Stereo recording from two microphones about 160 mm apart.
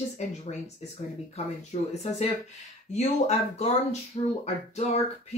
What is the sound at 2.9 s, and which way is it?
Speech, 45° left (ahead or behind).